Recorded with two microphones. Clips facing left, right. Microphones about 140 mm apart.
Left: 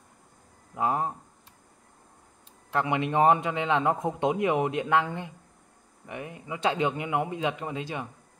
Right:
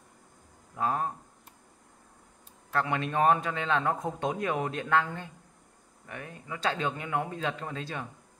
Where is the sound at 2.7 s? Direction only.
15° left (ahead or behind).